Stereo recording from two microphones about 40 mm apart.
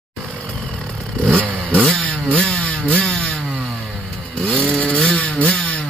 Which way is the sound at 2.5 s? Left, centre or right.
Left.